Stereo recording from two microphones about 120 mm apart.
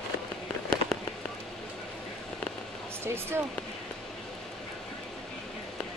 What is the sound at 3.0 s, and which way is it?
Speech, 20° right (ahead or behind).